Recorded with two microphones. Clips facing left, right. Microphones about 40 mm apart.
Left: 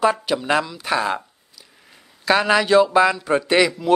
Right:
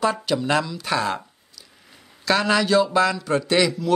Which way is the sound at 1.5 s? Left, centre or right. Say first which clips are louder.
Even; centre.